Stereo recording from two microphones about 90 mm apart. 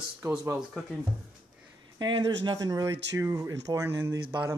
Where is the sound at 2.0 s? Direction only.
55° right (ahead or behind).